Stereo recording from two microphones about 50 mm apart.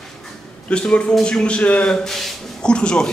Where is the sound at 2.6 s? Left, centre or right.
Centre.